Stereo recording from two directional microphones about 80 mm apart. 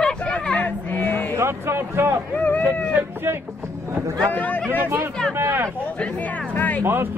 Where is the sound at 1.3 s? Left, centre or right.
Right.